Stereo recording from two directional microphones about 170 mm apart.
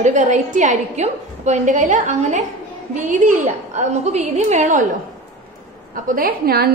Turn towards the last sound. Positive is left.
turn(degrees=-65)  # may be behind; listen again after turning